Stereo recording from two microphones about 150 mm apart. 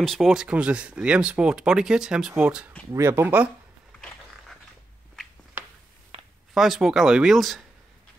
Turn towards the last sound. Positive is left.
turn(degrees=0)  # may be behind; listen again after turning